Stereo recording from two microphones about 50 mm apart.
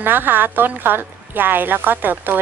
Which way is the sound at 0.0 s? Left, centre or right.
Right.